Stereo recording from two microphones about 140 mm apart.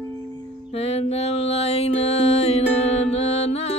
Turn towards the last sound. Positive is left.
turn(degrees=45)  # may be behind; listen again after turning